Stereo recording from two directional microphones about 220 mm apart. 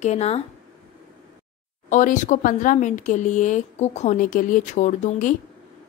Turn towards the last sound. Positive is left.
turn(degrees=35)  # may be behind; listen again after turning